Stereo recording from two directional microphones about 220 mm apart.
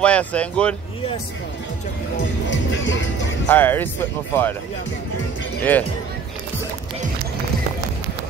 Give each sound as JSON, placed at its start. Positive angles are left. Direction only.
{"t": 0.0, "sound": "speech", "side_deg": 5}
{"t": 2.1, "sound": "music", "side_deg": 55}
{"t": 3.4, "sound": "speech", "side_deg": 10}
{"t": 5.6, "sound": "speech", "side_deg": 10}